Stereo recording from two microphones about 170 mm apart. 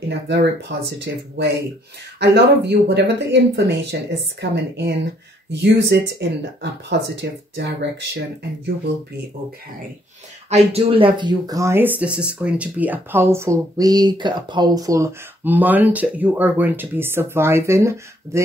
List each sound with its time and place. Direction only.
0.3 s speech: 80° right
3.9 s a woman's voice: 75° right (ahead or behind)
5.5 s speech: 90° right
10.5 s speech: 35° right (ahead or behind); by 18.4 s 15° right (ahead or behind)